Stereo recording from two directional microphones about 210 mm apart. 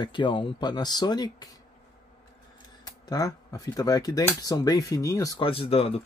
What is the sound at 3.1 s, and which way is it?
Speech, 15° left (ahead or behind).